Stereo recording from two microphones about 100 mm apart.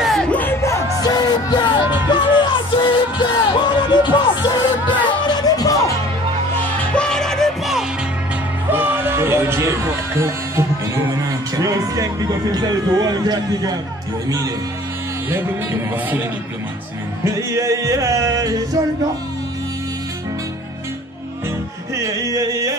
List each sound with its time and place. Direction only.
0.0 s music: centre (ahead or behind)
0.3 s music: 20° left (ahead or behind)
0.6 s music: 30° left (ahead or behind)
6.8 s music: 10° left (ahead or behind)
8.6 s music: 20° right (ahead or behind)
11.2 s speech: 35° right (ahead or behind)
15.2 s speech: 20° right (ahead or behind)
17.2 s music: 30° right (ahead or behind)
21.9 s music: 35° right (ahead or behind)